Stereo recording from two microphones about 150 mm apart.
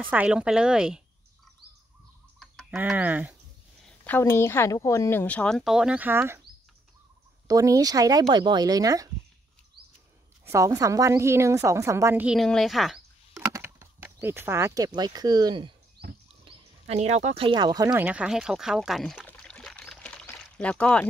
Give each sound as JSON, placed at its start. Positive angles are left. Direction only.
{"t": 0.0, "sound": "speech", "side_deg": -10}
{"t": 2.7, "sound": "speech", "side_deg": -10}
{"t": 3.8, "sound": "a woman's voice", "side_deg": 10}
{"t": 7.4, "sound": "a woman's voice", "side_deg": -20}
{"t": 10.4, "sound": "a woman's voice", "side_deg": -20}
{"t": 12.3, "sound": "speech", "side_deg": 0}
{"t": 13.3, "sound": "a sound", "side_deg": -15}
{"t": 15.0, "sound": "a woman's voice", "side_deg": -25}
{"t": 16.4, "sound": "speech", "side_deg": -45}
{"t": 17.9, "sound": "speech", "side_deg": -10}
{"t": 19.2, "sound": "pour", "side_deg": 5}